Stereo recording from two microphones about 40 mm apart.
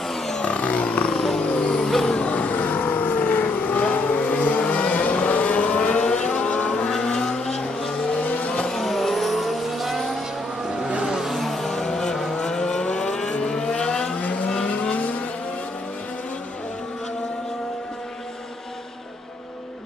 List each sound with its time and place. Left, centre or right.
0.4 s a sound: left
1.2 s vehicle: centre
2.0 s vehicle: left
6.7 s vehicle: centre
8.2 s vehicle: left
8.5 s vehicle: centre
10.9 s vehicle: right
11.3 s vehicle: centre
12.8 s vehicle: left
14.1 s vehicle: left